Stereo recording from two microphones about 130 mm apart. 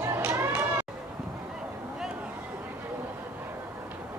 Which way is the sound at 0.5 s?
15° right (ahead or behind).